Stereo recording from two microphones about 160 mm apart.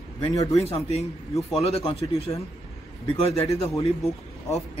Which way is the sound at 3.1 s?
40° left (ahead or behind).